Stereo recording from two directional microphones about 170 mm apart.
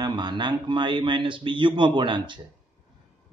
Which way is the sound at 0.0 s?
25° right (ahead or behind).